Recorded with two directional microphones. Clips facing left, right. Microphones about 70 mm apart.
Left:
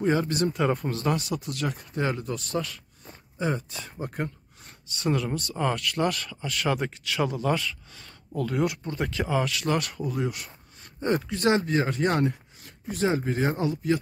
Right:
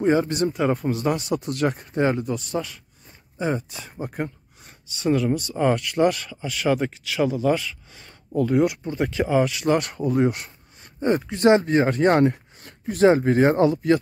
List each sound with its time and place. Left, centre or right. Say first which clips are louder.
0.5 s speech: right 3 dB; centre
1.2 s speech: right 7 dB; right
2.2 s speech: right 3 dB; centre
5.3 s speech: right 7 dB; centre
9.8 s speech: right 7 dB; right